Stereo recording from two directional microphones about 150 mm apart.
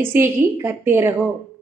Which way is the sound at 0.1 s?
15° right (ahead or behind).